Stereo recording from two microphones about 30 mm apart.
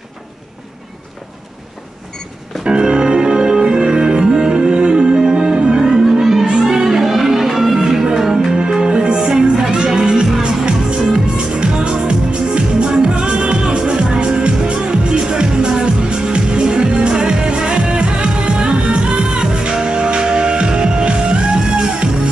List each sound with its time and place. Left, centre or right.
2.6 s music: right; by 8.5 s centre
8.7 s music: right
10.4 s music: right